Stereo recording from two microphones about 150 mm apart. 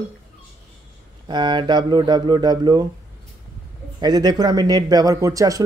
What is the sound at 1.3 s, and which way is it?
A man's voice, 30° right (ahead or behind).